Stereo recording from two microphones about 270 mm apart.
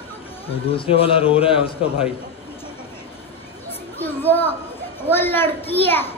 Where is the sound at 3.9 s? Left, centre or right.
Centre.